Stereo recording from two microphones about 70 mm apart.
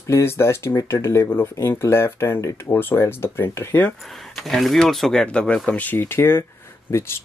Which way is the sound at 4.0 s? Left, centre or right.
Centre.